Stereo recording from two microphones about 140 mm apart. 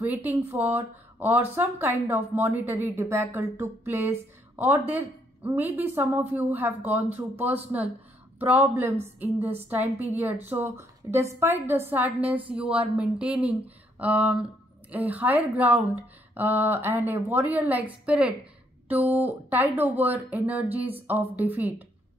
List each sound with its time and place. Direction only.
0.5 s speech: 15° right (ahead or behind)